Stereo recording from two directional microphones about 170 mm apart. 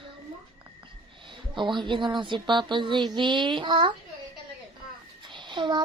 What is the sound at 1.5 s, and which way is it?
A woman's voice, 25° right (ahead or behind).